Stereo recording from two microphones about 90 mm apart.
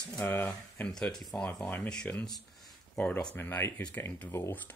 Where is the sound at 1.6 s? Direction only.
15° left (ahead or behind).